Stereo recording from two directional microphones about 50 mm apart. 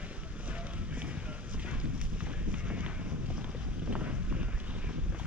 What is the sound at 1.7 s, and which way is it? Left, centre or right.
Boat, right.